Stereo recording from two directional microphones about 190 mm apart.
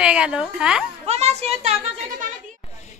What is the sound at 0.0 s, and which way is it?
Speech, 5° right (ahead or behind).